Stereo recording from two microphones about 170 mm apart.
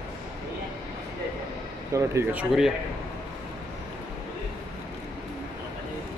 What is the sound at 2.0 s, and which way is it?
Speech, 15° right (ahead or behind).